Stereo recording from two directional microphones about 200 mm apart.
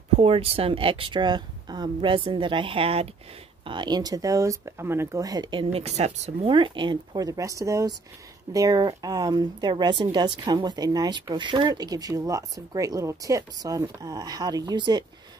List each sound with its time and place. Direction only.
0.2 s speech: 30° right (ahead or behind)